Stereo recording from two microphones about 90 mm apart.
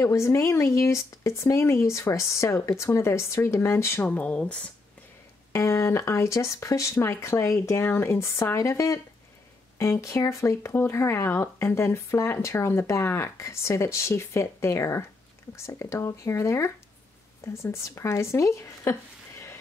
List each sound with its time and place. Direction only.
0.0 s speech: 35° left (ahead or behind)
4.1 s speech: 15° left (ahead or behind)
5.5 s speech: 30° left (ahead or behind)